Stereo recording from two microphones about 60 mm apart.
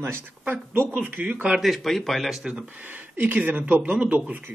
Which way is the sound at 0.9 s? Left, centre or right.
Right.